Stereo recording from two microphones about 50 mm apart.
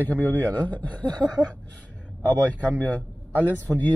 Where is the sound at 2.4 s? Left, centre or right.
Left.